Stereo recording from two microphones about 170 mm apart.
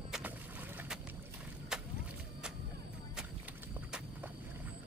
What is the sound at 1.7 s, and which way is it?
Vehicle, 5° right (ahead or behind).